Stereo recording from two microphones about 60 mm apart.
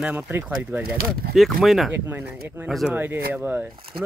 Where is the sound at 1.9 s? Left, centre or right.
Right.